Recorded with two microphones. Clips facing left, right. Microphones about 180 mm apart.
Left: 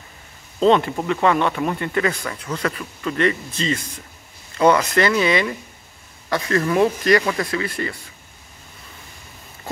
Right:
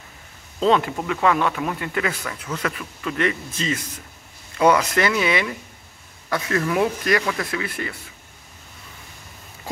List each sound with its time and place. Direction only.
0.7 s a man's voice: 5° right (ahead or behind)